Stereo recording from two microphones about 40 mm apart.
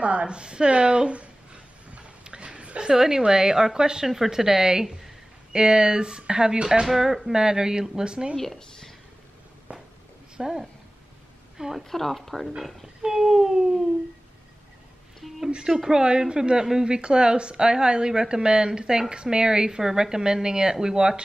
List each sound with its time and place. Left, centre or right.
0.0 s a sound: right
2.9 s a woman's voice: centre
6.9 s speech: centre
9.7 s a sound: right
10.3 s a woman's voice: centre
11.8 s speech: centre
12.8 s speech: centre
15.1 s a sound: centre
15.7 s a woman's voice: centre